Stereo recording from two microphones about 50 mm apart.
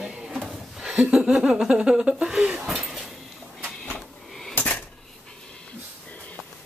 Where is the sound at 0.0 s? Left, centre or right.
Centre.